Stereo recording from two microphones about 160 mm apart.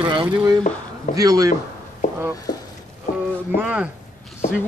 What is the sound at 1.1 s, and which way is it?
Speech, 20° right (ahead or behind).